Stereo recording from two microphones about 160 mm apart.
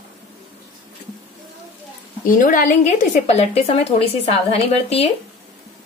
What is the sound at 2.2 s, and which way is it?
A woman's voice, 55° left (ahead or behind).